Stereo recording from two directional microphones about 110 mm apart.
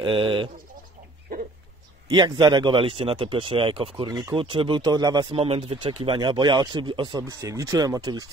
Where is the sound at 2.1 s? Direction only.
40° right (ahead or behind).